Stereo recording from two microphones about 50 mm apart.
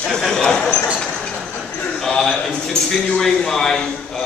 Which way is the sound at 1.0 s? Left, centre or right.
Centre.